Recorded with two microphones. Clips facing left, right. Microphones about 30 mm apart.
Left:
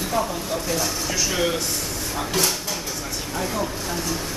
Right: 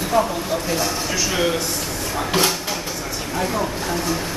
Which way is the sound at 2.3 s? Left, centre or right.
Right.